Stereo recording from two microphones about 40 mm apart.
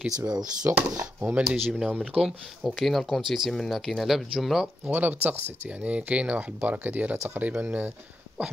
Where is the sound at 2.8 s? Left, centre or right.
Centre.